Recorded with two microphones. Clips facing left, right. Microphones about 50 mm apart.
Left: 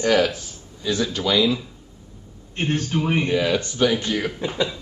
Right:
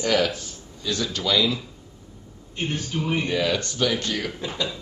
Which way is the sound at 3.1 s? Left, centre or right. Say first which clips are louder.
Left 2 dB; centre.